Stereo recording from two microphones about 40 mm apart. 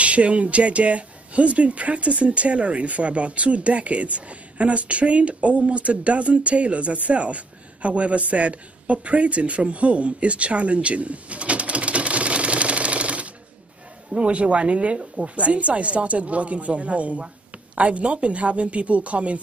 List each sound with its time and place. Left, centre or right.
0.0 s speech: right